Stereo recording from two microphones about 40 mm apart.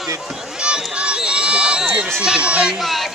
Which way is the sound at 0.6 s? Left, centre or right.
Right.